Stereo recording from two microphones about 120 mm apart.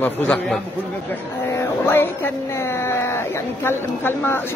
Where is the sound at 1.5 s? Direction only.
20° left (ahead or behind).